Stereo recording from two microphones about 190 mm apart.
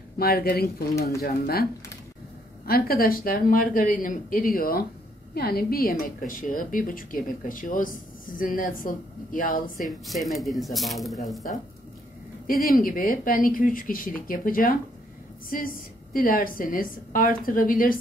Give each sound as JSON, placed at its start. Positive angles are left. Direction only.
{"t": 0.2, "sound": "a woman's voice", "side_deg": 55}
{"t": 9.8, "sound": "speech", "side_deg": 0}
{"t": 12.4, "sound": "a woman's voice", "side_deg": 50}